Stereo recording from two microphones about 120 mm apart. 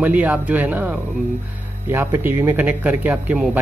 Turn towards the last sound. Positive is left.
turn(degrees=-10)  # may be behind; listen again after turning